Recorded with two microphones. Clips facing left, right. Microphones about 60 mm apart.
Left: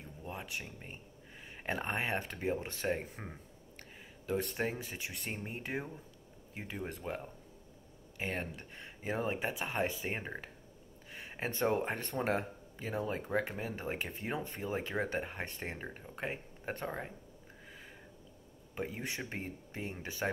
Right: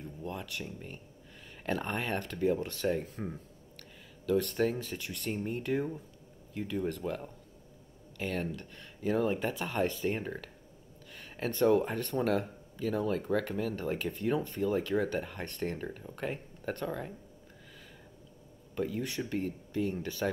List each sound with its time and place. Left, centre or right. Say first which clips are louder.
0.2 s speech: right 3 dB; centre
18.8 s speech: right 5 dB; left